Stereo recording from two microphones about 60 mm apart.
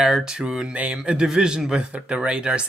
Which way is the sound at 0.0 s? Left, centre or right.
Centre.